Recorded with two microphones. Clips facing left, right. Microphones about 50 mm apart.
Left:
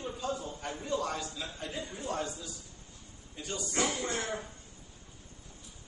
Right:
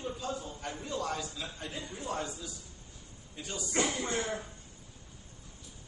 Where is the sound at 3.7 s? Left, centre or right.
Centre.